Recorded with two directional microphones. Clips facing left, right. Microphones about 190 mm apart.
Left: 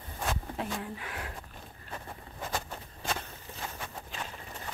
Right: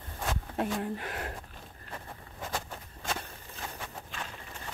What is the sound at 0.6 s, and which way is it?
Speech, 50° right (ahead or behind).